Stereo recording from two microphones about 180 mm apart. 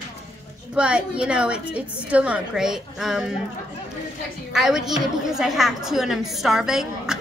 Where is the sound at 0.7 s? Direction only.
5° right (ahead or behind).